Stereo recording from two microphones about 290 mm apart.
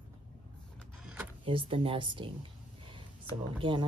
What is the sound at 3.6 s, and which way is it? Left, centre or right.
Speech, centre.